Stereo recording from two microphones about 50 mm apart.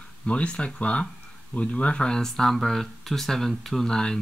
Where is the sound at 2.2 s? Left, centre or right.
Centre.